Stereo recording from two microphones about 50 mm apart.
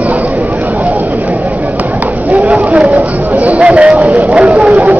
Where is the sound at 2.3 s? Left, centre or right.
Right.